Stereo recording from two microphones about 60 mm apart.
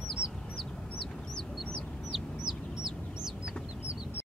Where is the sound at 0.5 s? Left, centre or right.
Centre.